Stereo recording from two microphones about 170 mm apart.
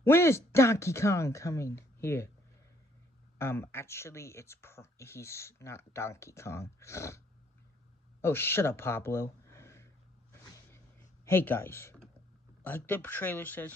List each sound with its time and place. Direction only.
0.0 s speech: 15° left (ahead or behind)
3.3 s speech: 15° left (ahead or behind)
8.2 s speech: 15° left (ahead or behind)
10.3 s a sound: 15° left (ahead or behind)
11.2 s speech: 15° left (ahead or behind)